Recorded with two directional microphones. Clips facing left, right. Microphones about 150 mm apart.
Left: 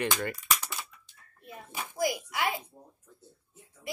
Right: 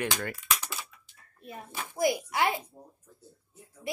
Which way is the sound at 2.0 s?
25° right (ahead or behind).